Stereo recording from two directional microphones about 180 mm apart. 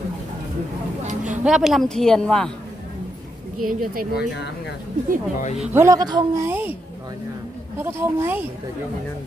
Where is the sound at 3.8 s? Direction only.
50° right (ahead or behind).